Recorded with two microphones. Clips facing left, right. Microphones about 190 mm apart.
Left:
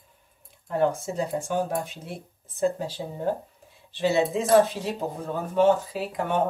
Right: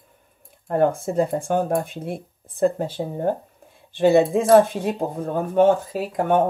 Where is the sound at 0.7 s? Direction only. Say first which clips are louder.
Right 4 dB; 55° right (ahead or behind).